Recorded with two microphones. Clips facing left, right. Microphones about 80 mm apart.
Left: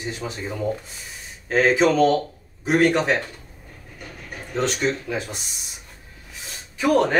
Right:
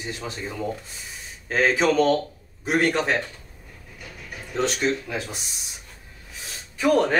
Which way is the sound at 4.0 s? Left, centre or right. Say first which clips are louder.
Left 2 dB; left.